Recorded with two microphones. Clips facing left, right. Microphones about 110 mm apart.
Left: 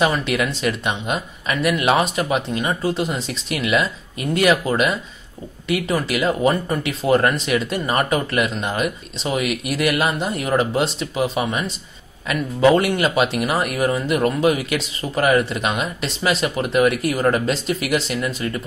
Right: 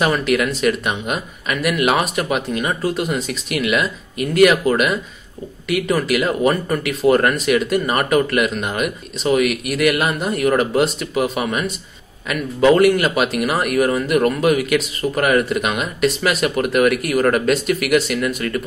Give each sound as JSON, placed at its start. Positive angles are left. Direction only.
{"t": 0.0, "sound": "speech", "side_deg": 25}